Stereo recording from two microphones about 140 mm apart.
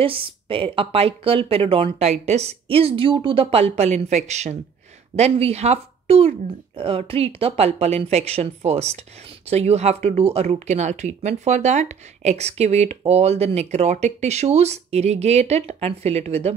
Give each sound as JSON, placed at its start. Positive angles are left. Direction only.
{"t": 0.0, "sound": "speech", "side_deg": -40}